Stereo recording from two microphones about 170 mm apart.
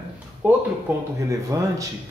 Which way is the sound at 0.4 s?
10° right (ahead or behind).